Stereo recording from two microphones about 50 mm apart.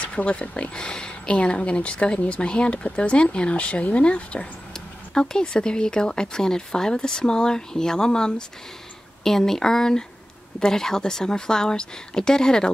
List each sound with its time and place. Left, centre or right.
0.0 s speech: left